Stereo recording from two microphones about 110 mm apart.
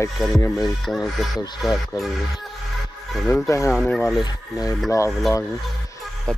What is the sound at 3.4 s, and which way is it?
Speech, 30° left (ahead or behind).